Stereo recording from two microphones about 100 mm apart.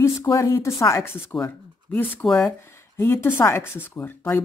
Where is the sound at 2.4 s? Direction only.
25° left (ahead or behind).